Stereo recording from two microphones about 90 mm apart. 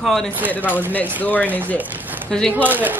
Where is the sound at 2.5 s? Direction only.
20° right (ahead or behind).